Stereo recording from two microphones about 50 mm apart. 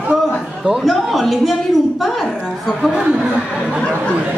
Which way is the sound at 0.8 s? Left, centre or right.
Centre.